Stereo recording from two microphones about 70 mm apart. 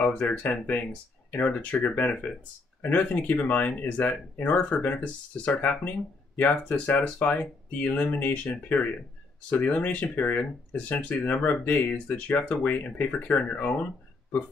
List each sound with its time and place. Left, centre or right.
0.0 s speech: centre
11.3 s speech: centre
11.6 s speech: left